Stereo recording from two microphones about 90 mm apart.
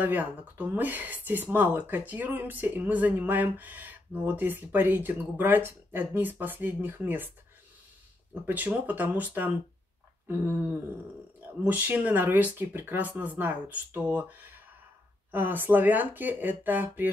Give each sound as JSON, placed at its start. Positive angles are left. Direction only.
{"t": 0.0, "sound": "speech", "side_deg": -20}
{"t": 8.5, "sound": "speech", "side_deg": -20}